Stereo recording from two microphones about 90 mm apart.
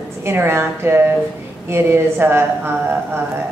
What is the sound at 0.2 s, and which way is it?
Speech, 25° right (ahead or behind).